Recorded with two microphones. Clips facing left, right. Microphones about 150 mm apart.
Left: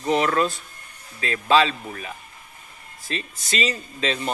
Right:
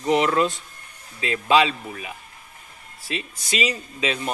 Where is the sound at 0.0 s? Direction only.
15° right (ahead or behind).